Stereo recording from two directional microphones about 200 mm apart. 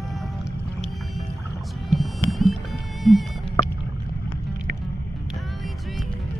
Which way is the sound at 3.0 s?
Centre (ahead or behind).